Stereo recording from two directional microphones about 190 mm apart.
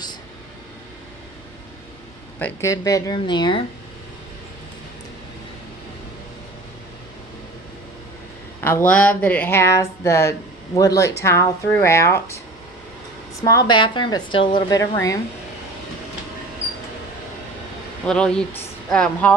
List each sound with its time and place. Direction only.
2.3 s speech: 10° left (ahead or behind)
8.5 s speech: 10° left (ahead or behind)
13.4 s a woman's voice: 20° left (ahead or behind)
18.0 s speech: 5° left (ahead or behind)